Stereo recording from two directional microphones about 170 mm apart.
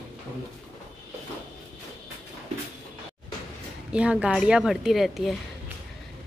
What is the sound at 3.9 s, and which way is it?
Speech, 5° right (ahead or behind).